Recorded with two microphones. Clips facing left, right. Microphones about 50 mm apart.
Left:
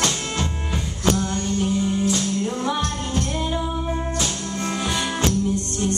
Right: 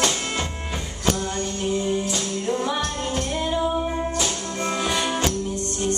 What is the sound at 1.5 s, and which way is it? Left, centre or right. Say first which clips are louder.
Music: left 1 dB; centre.